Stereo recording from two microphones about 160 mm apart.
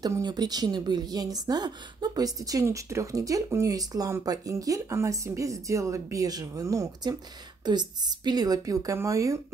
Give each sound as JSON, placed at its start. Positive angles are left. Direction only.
{"t": 0.0, "sound": "a woman's voice", "side_deg": -25}